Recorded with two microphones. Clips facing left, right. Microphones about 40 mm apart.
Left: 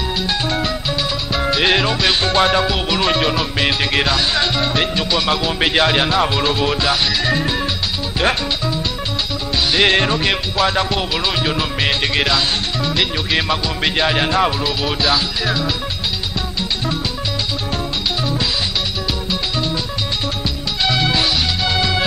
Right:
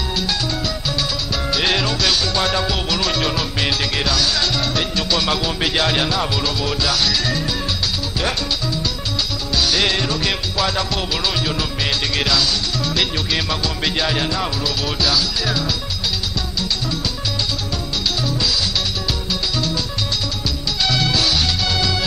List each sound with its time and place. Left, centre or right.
0.5 s music: left
2.2 s music: left
2.5 s music: centre
5.6 s music: left
8.2 s speech: left
9.6 s music: left
9.8 s music: left
18.2 s music: left
20.8 s music: centre